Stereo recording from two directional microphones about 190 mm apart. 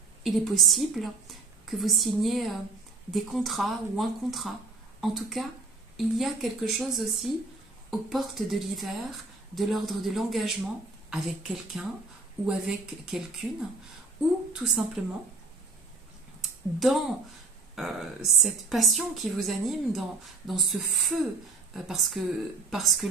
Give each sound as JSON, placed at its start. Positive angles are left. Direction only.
{"t": 0.2, "sound": "speech", "side_deg": 0}
{"t": 14.5, "sound": "a woman's voice", "side_deg": -5}
{"t": 16.3, "sound": "a sound", "side_deg": 0}
{"t": 17.7, "sound": "speech", "side_deg": 0}